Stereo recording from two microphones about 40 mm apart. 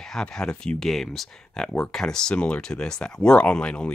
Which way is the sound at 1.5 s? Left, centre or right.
Centre.